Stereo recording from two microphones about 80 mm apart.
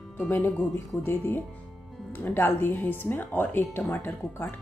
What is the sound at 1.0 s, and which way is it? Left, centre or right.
Speech, left.